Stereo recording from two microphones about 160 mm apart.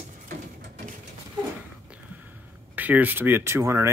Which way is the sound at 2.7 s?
10° right (ahead or behind).